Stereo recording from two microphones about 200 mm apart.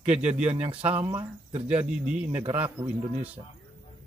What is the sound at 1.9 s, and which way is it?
Speech, 5° right (ahead or behind).